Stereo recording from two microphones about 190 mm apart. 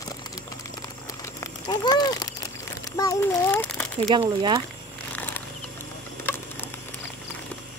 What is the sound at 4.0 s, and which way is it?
Speech, 25° right (ahead or behind).